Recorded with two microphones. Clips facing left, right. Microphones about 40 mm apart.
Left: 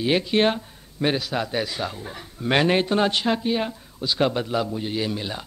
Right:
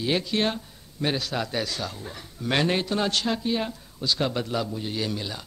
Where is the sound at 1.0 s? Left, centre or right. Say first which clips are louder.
Left 3 dB; centre.